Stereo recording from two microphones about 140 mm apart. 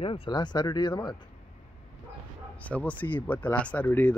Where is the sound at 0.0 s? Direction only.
40° left (ahead or behind).